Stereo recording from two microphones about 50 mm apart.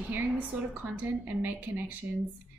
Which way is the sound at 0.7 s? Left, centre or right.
Right.